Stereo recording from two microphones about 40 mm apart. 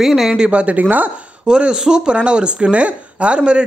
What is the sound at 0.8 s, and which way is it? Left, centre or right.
Speech, right.